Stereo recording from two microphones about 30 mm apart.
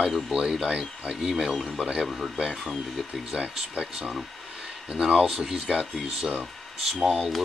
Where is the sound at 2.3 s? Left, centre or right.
Centre.